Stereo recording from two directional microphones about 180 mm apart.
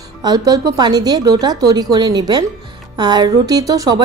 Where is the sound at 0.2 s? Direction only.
20° right (ahead or behind).